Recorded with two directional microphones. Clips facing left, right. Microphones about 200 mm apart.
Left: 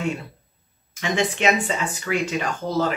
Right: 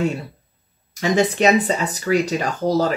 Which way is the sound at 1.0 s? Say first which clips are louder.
Right 5 dB; 40° right (ahead or behind).